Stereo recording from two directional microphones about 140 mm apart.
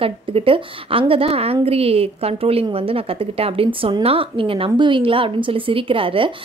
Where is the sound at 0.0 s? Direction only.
40° right (ahead or behind).